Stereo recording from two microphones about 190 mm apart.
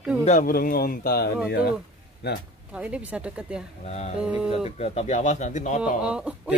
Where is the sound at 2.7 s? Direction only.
5° right (ahead or behind).